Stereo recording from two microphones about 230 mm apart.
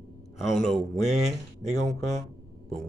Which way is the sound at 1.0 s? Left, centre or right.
Right.